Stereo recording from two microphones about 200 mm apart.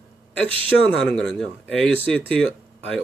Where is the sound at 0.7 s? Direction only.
5° left (ahead or behind).